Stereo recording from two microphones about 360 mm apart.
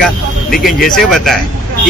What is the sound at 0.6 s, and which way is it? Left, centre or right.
Speech, centre.